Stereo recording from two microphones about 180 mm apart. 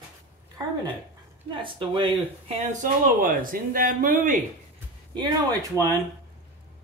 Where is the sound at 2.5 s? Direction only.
40° right (ahead or behind).